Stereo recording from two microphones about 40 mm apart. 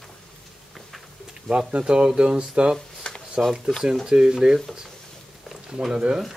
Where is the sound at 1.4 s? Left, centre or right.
Right.